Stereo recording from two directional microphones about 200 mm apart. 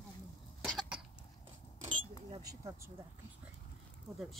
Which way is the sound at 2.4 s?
15° right (ahead or behind).